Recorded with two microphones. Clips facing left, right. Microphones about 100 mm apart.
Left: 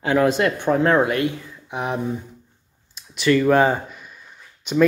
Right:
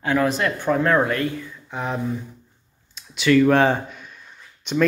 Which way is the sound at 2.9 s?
5° left (ahead or behind).